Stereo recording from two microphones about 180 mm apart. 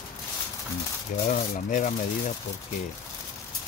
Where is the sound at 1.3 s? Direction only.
45° left (ahead or behind).